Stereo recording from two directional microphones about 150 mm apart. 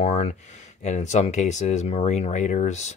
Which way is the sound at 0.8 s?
50° left (ahead or behind).